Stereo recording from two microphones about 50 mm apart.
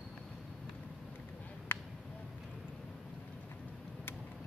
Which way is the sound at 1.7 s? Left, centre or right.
Left.